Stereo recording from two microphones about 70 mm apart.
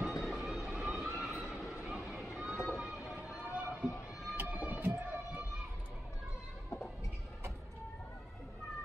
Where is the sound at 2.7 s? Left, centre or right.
Centre.